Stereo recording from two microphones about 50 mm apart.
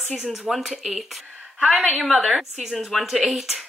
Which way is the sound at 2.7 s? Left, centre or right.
Centre.